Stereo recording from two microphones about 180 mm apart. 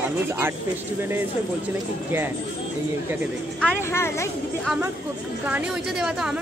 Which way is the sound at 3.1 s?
10° right (ahead or behind).